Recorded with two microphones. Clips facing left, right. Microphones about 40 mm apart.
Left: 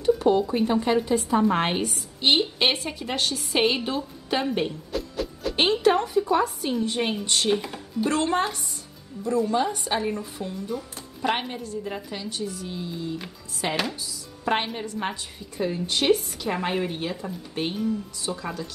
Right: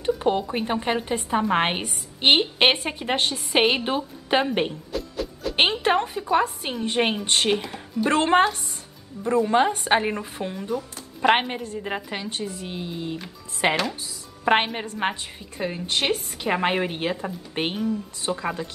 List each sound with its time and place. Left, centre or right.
0.0 s a woman's voice: right
4.9 s music: centre
5.6 s a sound: right
6.3 s a woman's voice: right
7.5 s speech: centre
8.1 s a woman's voice: right